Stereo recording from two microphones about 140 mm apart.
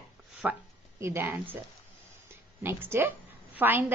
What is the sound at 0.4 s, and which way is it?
Speech, 15° right (ahead or behind).